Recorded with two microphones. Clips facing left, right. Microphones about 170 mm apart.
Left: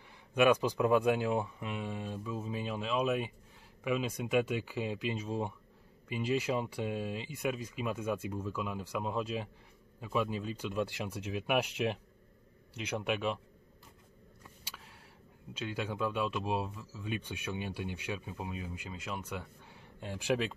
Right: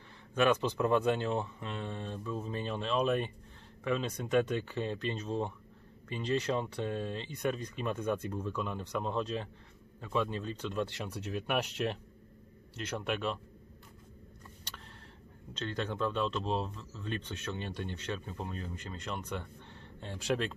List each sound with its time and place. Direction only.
0.3 s speech: 10° left (ahead or behind)
14.7 s a sound: 5° left (ahead or behind)
15.5 s speech: 10° left (ahead or behind)